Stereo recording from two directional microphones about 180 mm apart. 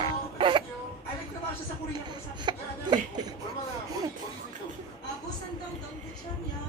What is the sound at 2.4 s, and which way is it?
Chuckle, 25° right (ahead or behind).